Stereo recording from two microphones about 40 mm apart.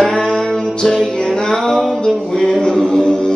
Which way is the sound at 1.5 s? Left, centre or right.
Centre.